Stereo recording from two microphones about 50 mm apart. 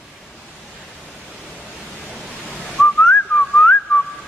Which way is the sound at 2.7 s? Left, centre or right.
Left.